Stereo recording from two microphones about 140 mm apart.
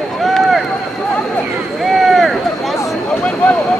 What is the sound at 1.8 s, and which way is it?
Vehicle, centre (ahead or behind).